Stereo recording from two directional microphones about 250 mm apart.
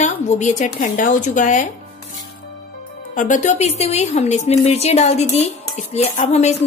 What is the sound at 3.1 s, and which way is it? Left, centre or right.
A woman's voice, left.